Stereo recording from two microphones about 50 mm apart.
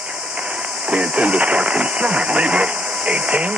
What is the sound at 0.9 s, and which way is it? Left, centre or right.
Speech, right.